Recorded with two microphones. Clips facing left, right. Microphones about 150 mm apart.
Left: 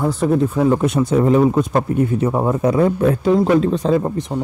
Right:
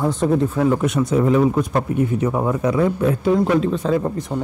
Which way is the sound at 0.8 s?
30° left (ahead or behind).